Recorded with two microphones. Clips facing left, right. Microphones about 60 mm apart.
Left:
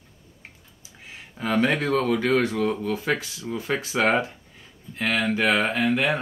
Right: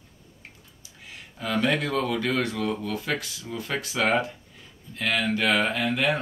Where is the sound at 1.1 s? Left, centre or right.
Left.